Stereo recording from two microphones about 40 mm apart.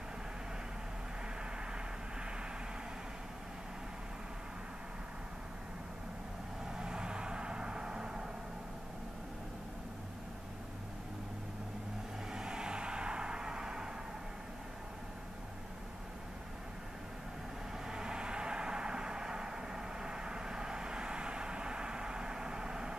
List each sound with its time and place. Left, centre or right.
6.8 s vehicle: right
12.3 s vehicle: centre
17.8 s vehicle: centre